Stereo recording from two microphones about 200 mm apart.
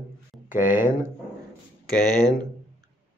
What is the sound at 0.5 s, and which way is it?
Speech, 40° left (ahead or behind).